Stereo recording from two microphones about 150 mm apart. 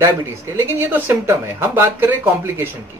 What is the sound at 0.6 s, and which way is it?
Speech, 15° right (ahead or behind).